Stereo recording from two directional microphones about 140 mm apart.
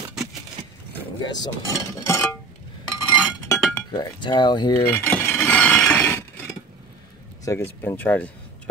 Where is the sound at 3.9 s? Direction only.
30° left (ahead or behind).